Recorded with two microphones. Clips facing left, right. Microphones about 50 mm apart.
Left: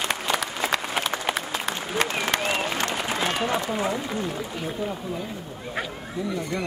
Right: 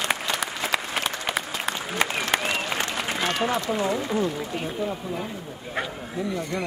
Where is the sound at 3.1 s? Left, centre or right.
Centre.